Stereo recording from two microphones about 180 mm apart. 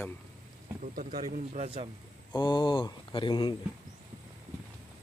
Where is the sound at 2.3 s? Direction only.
25° left (ahead or behind).